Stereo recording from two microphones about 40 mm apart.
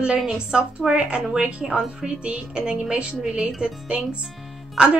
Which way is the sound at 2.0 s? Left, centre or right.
Right.